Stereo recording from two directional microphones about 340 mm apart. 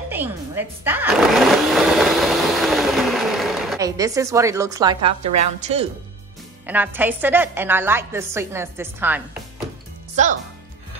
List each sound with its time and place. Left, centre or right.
0.1 s blender: centre
5.4 s speech: centre
6.6 s a woman's voice: centre
10.2 s speech: centre